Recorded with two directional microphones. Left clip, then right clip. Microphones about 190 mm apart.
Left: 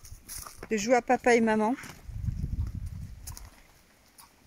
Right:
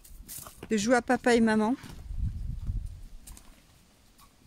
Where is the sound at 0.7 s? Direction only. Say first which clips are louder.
Left 1 dB; 15° right (ahead or behind).